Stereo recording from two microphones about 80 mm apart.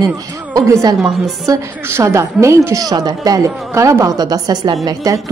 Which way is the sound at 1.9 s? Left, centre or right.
Right.